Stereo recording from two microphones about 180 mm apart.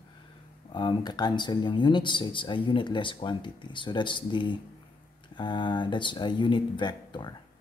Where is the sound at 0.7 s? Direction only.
25° left (ahead or behind).